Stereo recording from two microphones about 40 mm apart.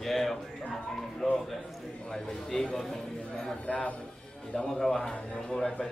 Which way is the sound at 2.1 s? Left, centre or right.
Centre.